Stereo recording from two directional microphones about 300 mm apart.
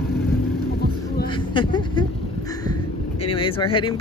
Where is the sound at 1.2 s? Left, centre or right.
Centre.